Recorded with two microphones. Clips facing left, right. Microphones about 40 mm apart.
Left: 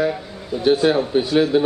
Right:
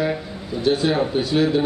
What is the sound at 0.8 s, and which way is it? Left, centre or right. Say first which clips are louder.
Speech: left 5 dB; left.